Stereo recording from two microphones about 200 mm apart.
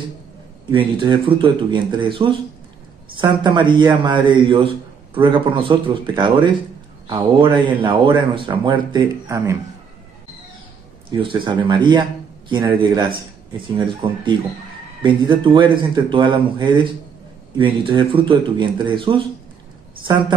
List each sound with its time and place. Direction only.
0.7 s speech: 25° right (ahead or behind)
11.1 s a man's voice: 25° right (ahead or behind)